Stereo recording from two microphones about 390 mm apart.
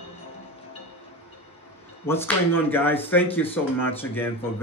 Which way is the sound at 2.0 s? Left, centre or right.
Centre.